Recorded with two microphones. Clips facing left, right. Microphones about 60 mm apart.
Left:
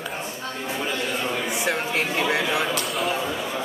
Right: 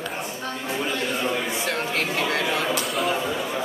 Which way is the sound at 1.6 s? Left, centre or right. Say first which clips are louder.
Left 1 dB; centre.